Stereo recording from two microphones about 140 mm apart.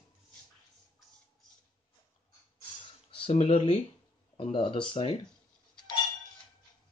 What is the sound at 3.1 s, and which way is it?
Speech, 45° left (ahead or behind).